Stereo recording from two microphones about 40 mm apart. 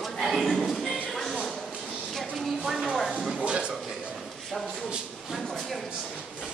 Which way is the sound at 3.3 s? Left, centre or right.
Right.